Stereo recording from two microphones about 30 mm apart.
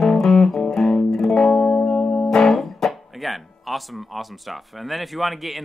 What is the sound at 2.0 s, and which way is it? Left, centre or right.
Music, left.